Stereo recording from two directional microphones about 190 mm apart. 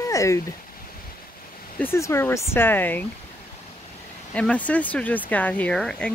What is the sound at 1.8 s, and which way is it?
Speech, 15° left (ahead or behind).